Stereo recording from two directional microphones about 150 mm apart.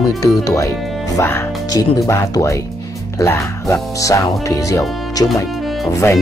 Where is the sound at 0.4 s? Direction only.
25° left (ahead or behind).